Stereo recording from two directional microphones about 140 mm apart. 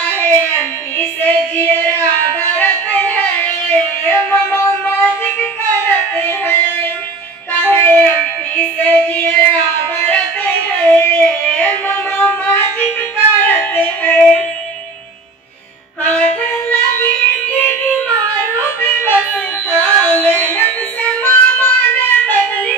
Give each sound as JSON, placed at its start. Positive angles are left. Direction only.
{"t": 0.0, "sound": "a sound", "side_deg": 15}
{"t": 0.9, "sound": "child singing", "side_deg": 15}
{"t": 2.6, "sound": "music", "side_deg": 10}
{"t": 5.9, "sound": "a sound", "side_deg": 15}
{"t": 7.5, "sound": "music", "side_deg": 10}
{"t": 8.8, "sound": "child singing", "side_deg": 15}
{"t": 10.0, "sound": "music", "side_deg": 10}
{"t": 16.0, "sound": "music", "side_deg": 10}
{"t": 17.6, "sound": "music", "side_deg": 15}